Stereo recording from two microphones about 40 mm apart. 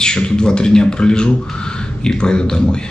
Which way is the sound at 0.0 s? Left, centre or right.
Centre.